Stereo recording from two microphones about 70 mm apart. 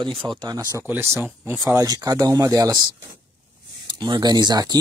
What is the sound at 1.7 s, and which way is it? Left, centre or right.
Speech, right.